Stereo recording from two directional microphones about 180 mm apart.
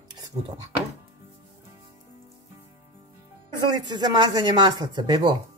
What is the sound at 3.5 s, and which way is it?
Speech, 25° right (ahead or behind).